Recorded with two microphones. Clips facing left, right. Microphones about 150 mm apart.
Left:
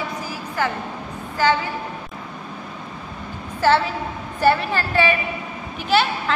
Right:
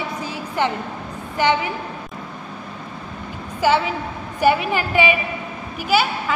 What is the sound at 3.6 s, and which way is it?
A woman's voice, 15° right (ahead or behind).